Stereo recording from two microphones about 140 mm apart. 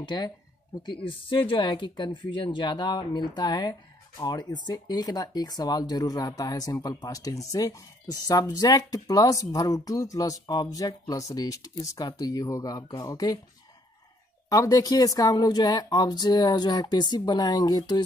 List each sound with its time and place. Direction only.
0.0 s speech: 30° left (ahead or behind)
14.5 s speech: 25° left (ahead or behind)